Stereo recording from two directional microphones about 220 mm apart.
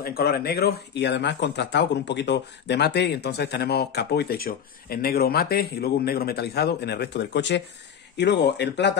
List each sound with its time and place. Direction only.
0.0 s speech: 45° left (ahead or behind)